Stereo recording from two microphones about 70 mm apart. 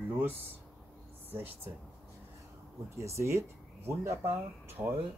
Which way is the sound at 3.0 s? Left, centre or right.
Right.